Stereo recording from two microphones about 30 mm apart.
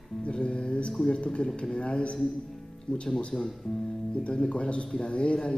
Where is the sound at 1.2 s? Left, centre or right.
Left.